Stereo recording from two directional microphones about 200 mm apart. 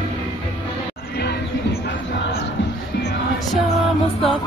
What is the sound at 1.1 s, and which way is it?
Music, 55° left (ahead or behind).